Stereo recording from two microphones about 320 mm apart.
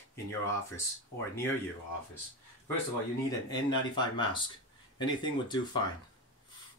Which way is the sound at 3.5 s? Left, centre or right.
Centre.